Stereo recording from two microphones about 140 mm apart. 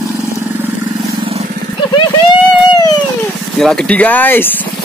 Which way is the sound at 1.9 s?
30° left (ahead or behind).